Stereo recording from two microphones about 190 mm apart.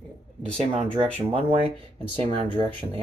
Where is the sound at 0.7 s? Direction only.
30° right (ahead or behind).